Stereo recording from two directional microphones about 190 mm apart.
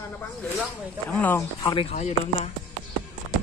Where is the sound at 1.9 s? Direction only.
35° left (ahead or behind).